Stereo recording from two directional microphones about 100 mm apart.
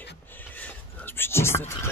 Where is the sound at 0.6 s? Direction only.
20° left (ahead or behind).